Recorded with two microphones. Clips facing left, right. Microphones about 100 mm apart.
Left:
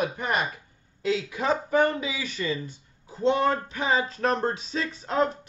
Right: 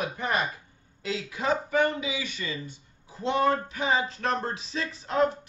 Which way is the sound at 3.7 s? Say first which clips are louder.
Left 1 dB; 35° left (ahead or behind).